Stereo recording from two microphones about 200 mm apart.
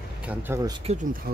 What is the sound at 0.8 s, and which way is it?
Speech, 35° right (ahead or behind).